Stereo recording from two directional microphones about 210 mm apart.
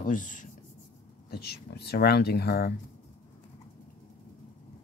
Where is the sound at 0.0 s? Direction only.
40° left (ahead or behind).